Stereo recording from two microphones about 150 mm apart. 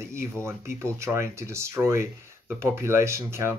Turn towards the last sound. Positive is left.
turn(degrees=-20)  # may be behind; listen again after turning